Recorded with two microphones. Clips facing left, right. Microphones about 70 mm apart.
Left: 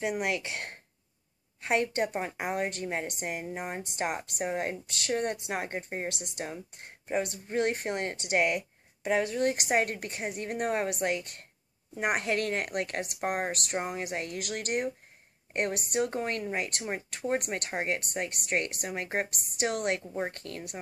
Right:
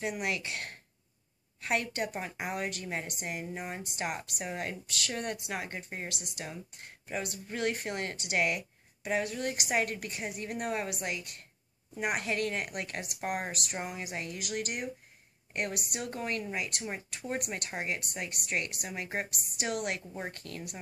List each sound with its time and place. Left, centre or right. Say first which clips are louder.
0.0 s speech: left 3 dB; left
14.0 s speech: left 4 dB; left